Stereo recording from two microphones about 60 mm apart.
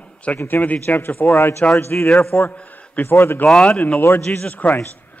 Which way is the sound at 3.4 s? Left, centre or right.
Centre.